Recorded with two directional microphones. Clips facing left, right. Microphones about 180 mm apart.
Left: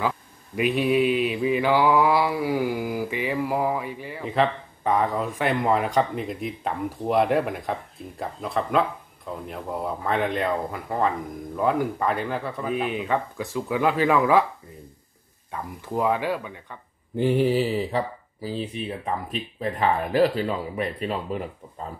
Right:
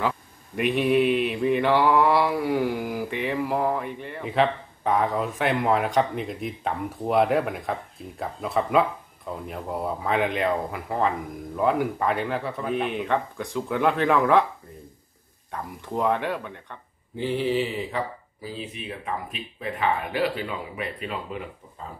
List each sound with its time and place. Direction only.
0.6 s mantra: centre (ahead or behind)
15.5 s mantra: 5° left (ahead or behind)
17.2 s mantra: 50° left (ahead or behind)
17.6 s speech: 35° left (ahead or behind)